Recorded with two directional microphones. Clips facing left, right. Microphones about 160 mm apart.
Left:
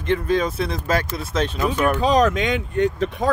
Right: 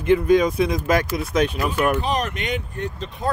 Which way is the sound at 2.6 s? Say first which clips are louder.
Left 9 dB; 85° left.